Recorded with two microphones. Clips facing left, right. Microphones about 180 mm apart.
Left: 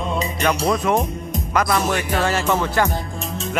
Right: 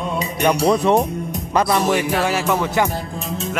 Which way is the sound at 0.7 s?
30° right (ahead or behind).